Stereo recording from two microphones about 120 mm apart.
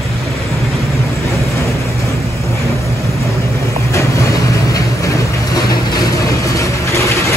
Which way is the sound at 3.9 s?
25° left (ahead or behind).